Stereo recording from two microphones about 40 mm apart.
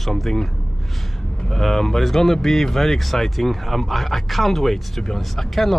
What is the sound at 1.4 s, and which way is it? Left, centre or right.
Speech, centre.